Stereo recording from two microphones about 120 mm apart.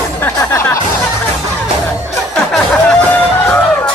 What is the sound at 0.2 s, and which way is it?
Music, 20° left (ahead or behind).